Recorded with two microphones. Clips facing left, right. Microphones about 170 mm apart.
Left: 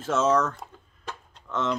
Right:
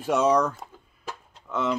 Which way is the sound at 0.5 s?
5° right (ahead or behind).